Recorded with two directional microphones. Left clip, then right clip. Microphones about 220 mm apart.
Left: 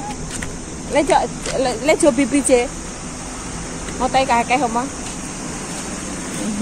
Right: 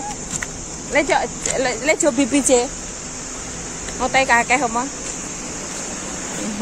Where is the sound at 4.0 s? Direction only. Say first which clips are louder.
Even; 25° right (ahead or behind).